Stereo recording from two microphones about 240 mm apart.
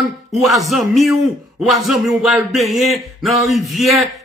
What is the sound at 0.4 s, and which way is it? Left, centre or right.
Speech, centre.